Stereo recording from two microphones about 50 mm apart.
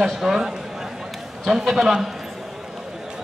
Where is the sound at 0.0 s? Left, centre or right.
Centre.